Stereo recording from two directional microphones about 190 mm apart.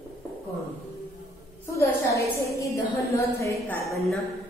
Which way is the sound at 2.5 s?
15° left (ahead or behind).